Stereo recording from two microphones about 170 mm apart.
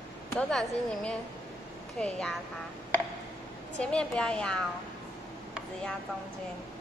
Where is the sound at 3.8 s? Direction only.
5° left (ahead or behind).